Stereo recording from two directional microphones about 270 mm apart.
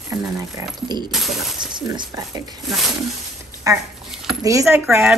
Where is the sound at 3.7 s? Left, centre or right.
Centre.